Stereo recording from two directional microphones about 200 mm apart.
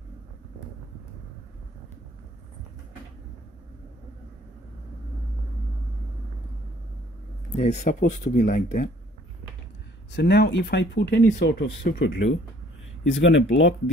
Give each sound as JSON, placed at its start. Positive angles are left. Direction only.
{"t": 7.5, "sound": "speech", "side_deg": 35}
{"t": 10.1, "sound": "speech", "side_deg": 55}
{"t": 11.9, "sound": "speech", "side_deg": 50}
{"t": 13.1, "sound": "speech", "side_deg": 65}